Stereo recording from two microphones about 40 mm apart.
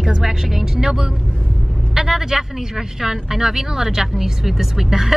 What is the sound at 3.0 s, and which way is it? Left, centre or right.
Speech, centre.